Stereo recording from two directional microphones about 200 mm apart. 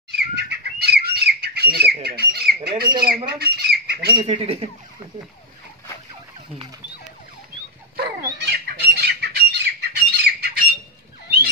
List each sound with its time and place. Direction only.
0.1 s bird: 55° right (ahead or behind)
2.0 s speech: 50° right (ahead or behind)
4.1 s speech: 25° right (ahead or behind)
7.9 s a sound: 50° right (ahead or behind)
8.4 s squawk: 55° right (ahead or behind)